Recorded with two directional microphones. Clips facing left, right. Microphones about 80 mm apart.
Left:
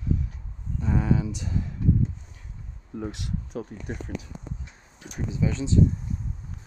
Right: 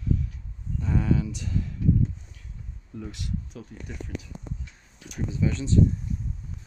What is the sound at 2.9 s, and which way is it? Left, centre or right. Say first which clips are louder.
Speech: left 5 dB; left.